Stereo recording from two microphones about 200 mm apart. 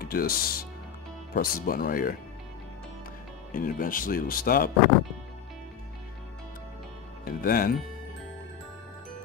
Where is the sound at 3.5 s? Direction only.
45° left (ahead or behind).